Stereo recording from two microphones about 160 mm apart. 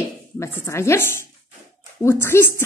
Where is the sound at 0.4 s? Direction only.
15° left (ahead or behind).